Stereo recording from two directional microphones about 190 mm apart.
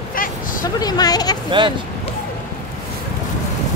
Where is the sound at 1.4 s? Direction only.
25° right (ahead or behind).